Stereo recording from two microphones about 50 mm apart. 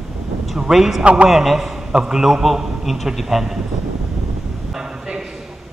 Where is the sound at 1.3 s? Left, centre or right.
Centre.